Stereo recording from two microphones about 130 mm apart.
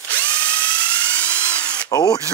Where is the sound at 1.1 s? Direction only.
10° left (ahead or behind).